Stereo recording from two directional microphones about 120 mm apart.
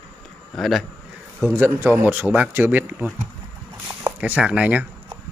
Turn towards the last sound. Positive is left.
turn(degrees=-10)  # may be behind; listen again after turning